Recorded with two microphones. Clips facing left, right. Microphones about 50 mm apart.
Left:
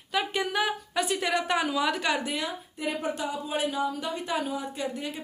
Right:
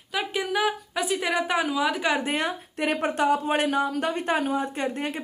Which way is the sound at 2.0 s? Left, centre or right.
Right.